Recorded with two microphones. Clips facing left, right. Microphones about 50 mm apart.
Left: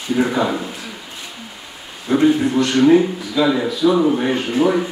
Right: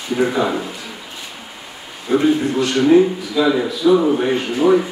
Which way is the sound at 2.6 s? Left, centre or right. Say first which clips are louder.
Right 1 dB; centre.